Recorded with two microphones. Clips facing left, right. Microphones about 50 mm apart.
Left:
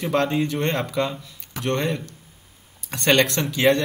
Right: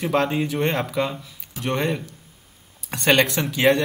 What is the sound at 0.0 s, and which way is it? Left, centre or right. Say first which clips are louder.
Speech: even; centre.